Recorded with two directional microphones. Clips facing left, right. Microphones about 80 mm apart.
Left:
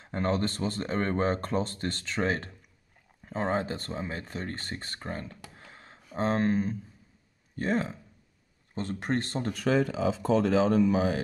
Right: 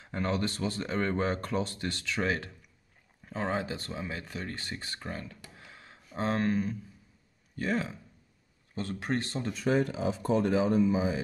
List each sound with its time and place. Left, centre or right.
0.0 s speech: left
10.2 s speech: left